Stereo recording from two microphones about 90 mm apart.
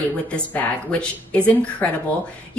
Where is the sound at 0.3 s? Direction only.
15° left (ahead or behind).